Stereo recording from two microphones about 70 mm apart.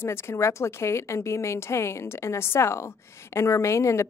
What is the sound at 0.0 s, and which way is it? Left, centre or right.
A woman's voice, left.